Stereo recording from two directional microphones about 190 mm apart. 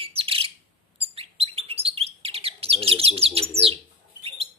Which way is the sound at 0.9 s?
30° right (ahead or behind).